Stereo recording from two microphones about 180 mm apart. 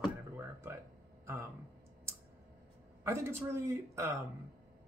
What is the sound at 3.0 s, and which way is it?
Speech, 15° right (ahead or behind).